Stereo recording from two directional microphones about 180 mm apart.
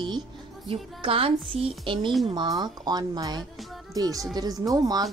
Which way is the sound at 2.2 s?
25° right (ahead or behind).